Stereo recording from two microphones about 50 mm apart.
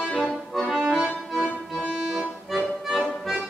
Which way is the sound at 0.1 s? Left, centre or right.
Centre.